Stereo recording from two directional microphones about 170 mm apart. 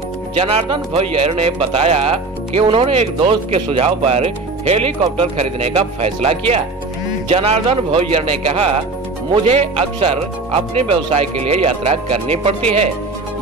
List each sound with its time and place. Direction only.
0.4 s speech: 35° right (ahead or behind)